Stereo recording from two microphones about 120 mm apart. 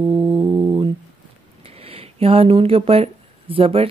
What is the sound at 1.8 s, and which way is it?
Speech, 55° right (ahead or behind).